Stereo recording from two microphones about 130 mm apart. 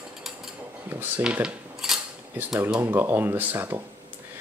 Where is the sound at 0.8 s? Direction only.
15° right (ahead or behind).